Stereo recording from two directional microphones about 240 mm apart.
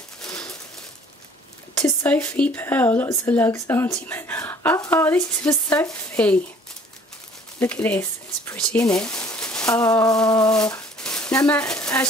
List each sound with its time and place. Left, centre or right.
0.2 s a sound: centre
1.8 s speech: centre
7.5 s speech: centre